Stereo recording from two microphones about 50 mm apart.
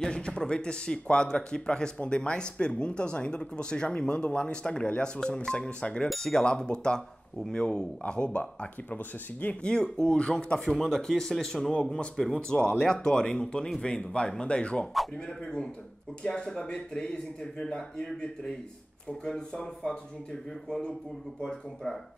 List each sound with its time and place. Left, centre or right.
0.0 s a man's voice: centre
6.0 s a man's voice: centre; by 9.6 s left
9.6 s a man's voice: centre
21.4 s a man's voice: centre